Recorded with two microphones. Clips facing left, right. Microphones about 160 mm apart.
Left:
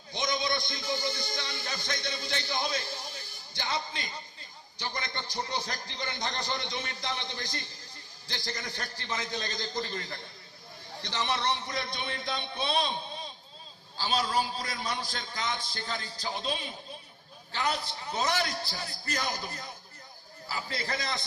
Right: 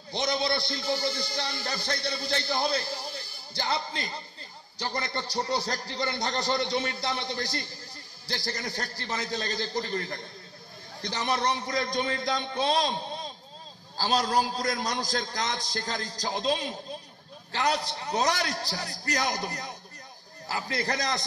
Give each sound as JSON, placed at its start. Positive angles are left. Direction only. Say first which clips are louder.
{"t": 0.1, "sound": "a man's voice", "louder": "right 3 dB", "side_deg": -35}
{"t": 11.6, "sound": "a man's voice", "louder": "right 7 dB", "side_deg": -40}
{"t": 17.9, "sound": "a man's voice", "louder": "right 5 dB", "side_deg": -70}
{"t": 18.2, "sound": "a man's voice", "louder": "right 1 dB", "side_deg": -40}
{"t": 19.2, "sound": "a man's voice", "louder": "right 5 dB", "side_deg": -75}
{"t": 20.8, "sound": "a man's voice", "louder": "right 5 dB", "side_deg": -40}